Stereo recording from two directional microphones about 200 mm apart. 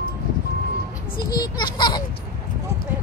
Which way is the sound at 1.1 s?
20° left (ahead or behind).